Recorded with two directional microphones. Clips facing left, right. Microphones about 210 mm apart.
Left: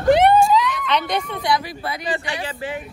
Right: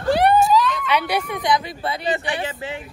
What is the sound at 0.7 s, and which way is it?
Speech, 10° right (ahead or behind).